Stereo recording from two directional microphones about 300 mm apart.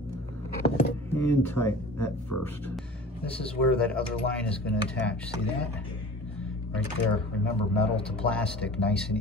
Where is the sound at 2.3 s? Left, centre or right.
Left.